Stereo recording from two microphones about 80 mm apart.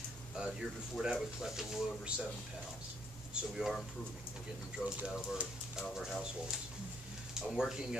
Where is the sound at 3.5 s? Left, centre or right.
Centre.